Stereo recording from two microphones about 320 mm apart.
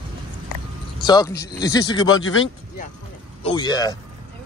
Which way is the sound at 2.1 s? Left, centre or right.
Left.